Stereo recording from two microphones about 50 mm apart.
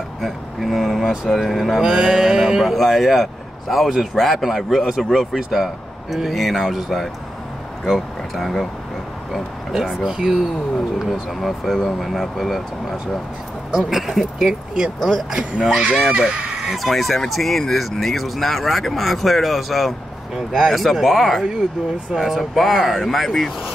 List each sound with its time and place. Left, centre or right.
0.2 s speech: centre
13.8 s speech: centre
14.4 s speech: centre